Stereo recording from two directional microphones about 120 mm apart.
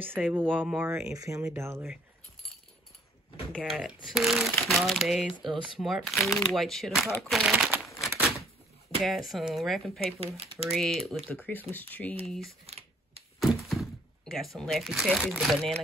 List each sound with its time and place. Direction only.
0.1 s speech: 15° right (ahead or behind)
3.5 s speech: 5° right (ahead or behind)
7.5 s crumpling: 10° right (ahead or behind)
9.0 s speech: centre (ahead or behind)
11.2 s speech: 15° left (ahead or behind)
13.4 s thunk: centre (ahead or behind)
15.0 s speech: 5° left (ahead or behind)